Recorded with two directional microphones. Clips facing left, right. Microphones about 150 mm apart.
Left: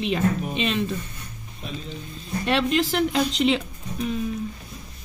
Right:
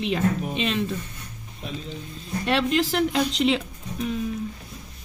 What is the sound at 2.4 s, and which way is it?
Speech, centre (ahead or behind).